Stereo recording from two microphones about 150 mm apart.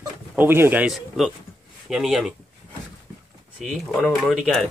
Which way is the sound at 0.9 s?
Centre (ahead or behind).